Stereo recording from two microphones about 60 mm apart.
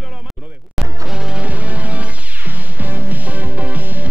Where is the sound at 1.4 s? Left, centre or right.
Right.